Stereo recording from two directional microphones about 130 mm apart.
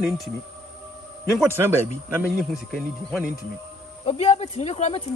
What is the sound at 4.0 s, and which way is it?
Speech, 50° left (ahead or behind).